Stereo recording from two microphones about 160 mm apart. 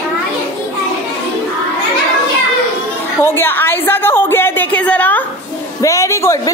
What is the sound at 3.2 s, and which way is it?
A woman's voice, 15° left (ahead or behind).